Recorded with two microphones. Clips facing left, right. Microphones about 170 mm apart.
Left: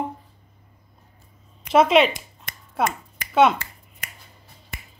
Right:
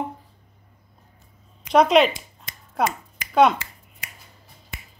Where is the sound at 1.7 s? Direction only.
Centre (ahead or behind).